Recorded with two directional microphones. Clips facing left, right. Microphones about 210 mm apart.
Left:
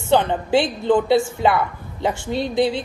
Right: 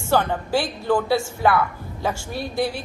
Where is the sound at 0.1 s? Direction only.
20° left (ahead or behind).